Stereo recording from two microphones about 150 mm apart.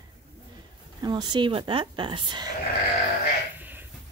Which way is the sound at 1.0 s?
30° right (ahead or behind).